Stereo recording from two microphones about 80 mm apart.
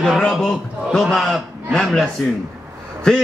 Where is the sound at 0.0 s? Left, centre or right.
Centre.